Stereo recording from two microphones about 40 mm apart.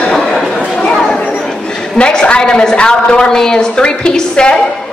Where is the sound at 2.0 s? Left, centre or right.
Left.